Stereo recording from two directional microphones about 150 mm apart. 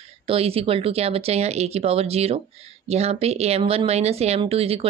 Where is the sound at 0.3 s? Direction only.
40° right (ahead or behind).